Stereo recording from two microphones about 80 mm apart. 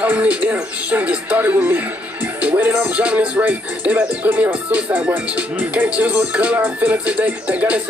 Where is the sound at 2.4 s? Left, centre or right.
Centre.